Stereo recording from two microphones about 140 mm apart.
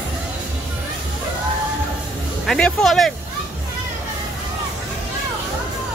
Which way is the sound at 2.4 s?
5° left (ahead or behind).